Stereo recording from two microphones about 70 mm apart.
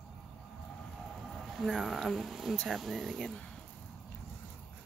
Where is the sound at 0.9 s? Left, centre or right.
Centre.